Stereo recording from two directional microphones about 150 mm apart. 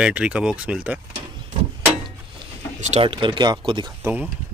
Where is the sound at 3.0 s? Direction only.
35° right (ahead or behind).